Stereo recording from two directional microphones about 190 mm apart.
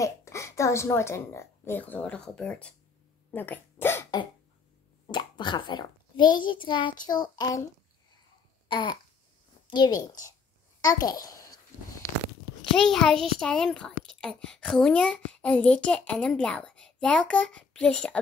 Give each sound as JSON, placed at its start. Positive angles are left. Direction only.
{"t": 0.0, "sound": "speech", "side_deg": 15}
{"t": 3.3, "sound": "dog", "side_deg": 10}
{"t": 5.0, "sound": "a child's voice", "side_deg": 25}
{"t": 8.6, "sound": "babbling", "side_deg": 25}
{"t": 9.7, "sound": "a woman's voice", "side_deg": 20}
{"t": 12.7, "sound": "a woman's voice", "side_deg": 0}